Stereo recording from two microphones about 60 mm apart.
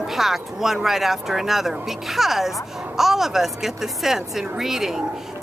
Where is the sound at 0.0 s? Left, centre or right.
Centre.